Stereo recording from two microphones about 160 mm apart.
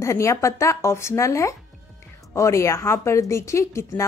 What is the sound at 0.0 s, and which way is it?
A woman's voice, 20° left (ahead or behind).